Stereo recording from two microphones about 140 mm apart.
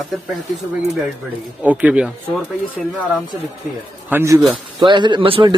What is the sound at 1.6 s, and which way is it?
Speech, 5° right (ahead or behind).